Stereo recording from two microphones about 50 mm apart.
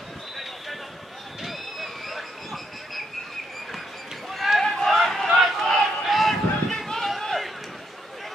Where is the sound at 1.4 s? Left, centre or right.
Centre.